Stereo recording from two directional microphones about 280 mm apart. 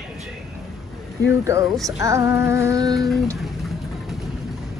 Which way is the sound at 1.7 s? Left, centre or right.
Centre.